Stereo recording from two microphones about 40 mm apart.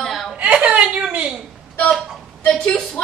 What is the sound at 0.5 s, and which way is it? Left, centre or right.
Speech, right.